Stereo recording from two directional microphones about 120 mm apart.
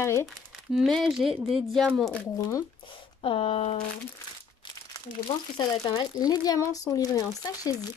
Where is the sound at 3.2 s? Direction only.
45° left (ahead or behind).